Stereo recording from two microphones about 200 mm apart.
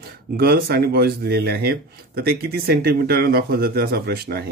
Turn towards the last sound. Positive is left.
turn(degrees=-50)  # may be behind; listen again after turning